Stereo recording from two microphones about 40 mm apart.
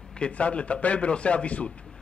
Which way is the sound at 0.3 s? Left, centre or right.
Left.